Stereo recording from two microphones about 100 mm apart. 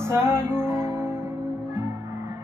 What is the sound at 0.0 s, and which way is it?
Music, 25° right (ahead or behind).